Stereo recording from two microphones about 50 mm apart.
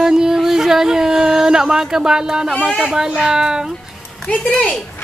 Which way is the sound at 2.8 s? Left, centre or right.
Centre.